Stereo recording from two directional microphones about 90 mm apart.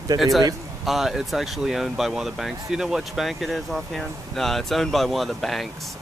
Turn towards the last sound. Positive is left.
turn(degrees=0)  # may be behind; listen again after turning